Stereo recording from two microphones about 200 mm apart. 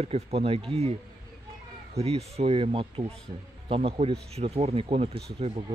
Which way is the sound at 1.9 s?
30° right (ahead or behind).